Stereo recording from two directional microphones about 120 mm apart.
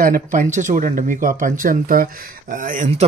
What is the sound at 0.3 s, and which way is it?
Speech, 90° right.